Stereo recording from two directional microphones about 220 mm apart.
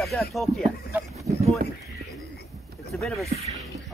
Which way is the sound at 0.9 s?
10° right (ahead or behind).